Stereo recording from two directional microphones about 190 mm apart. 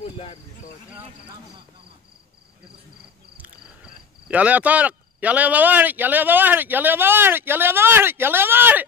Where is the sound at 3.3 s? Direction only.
5° right (ahead or behind).